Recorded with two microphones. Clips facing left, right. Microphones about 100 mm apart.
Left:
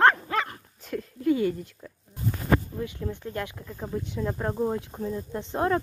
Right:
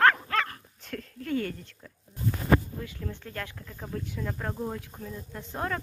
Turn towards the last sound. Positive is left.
turn(degrees=25)  # may be behind; listen again after turning